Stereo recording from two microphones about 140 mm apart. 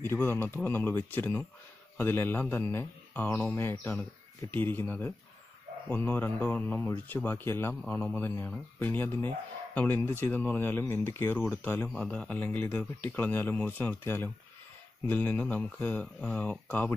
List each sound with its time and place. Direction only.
0.0 s speech: 15° left (ahead or behind)